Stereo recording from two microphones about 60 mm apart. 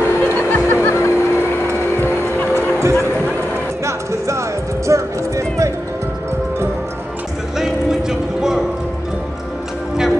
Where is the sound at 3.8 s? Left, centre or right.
Right.